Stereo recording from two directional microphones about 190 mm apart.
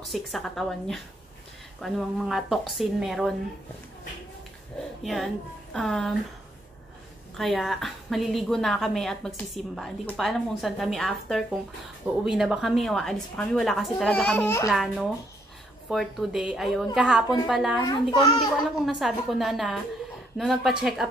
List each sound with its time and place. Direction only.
0.1 s a woman's voice: centre (ahead or behind)
5.0 s a woman's voice: centre (ahead or behind)
7.3 s a woman's voice: centre (ahead or behind)
14.7 s a woman's voice: centre (ahead or behind)
17.8 s a child's voice: 20° left (ahead or behind)
18.9 s a woman's voice: centre (ahead or behind)